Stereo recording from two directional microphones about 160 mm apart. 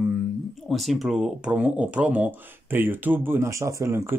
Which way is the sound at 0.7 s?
Centre (ahead or behind).